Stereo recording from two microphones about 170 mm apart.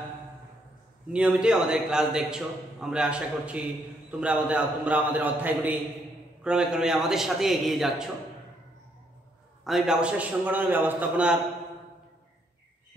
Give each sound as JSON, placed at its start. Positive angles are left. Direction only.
{"t": 1.1, "sound": "a man's voice", "side_deg": -5}
{"t": 9.7, "sound": "a man's voice", "side_deg": 0}